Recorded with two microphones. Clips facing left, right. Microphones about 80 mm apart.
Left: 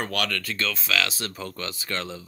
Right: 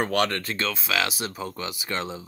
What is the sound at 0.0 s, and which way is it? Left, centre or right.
Speech, right.